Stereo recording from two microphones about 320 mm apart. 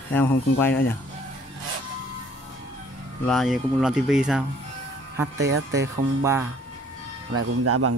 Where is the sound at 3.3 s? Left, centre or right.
Centre.